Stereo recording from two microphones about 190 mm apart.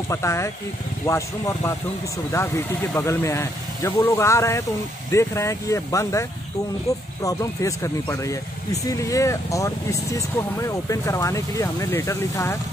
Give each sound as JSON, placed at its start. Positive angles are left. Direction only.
{"t": 0.1, "sound": "speech", "side_deg": 15}
{"t": 7.2, "sound": "speech", "side_deg": 15}